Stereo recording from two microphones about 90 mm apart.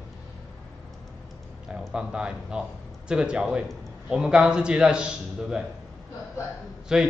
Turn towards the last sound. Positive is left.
turn(degrees=-5)  # may be behind; listen again after turning